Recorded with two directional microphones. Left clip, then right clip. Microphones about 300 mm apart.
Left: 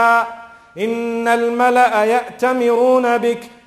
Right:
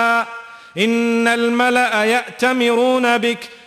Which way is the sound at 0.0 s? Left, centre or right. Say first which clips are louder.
Left 3 dB; right.